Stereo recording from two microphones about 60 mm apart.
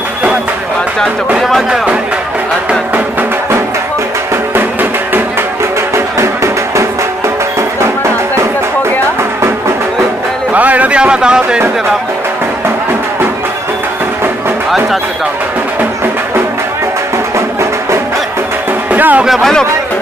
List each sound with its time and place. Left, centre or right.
5.9 s music: right
10.5 s a sound: right
18.9 s music: right
19.2 s a man's voice: centre